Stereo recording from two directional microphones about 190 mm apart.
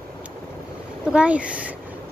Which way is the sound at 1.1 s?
5° right (ahead or behind).